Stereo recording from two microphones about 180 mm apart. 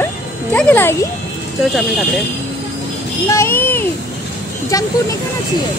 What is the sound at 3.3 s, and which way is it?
Speech, 15° left (ahead or behind).